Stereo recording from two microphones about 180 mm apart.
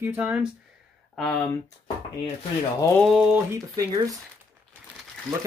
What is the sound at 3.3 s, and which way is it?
Speech, 15° right (ahead or behind).